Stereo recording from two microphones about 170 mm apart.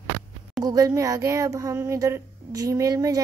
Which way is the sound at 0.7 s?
20° right (ahead or behind).